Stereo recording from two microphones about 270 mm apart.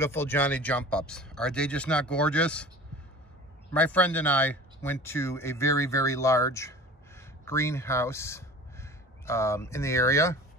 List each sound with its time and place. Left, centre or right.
0.0 s speech: centre
3.7 s speech: centre